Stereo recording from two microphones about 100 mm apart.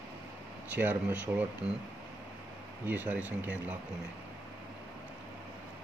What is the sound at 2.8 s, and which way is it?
Speech, 15° right (ahead or behind).